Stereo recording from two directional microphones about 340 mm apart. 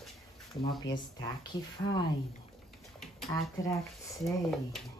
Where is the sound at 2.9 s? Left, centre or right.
Centre.